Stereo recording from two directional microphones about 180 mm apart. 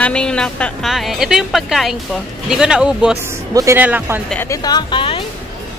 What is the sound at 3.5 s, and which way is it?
Speech, 15° right (ahead or behind).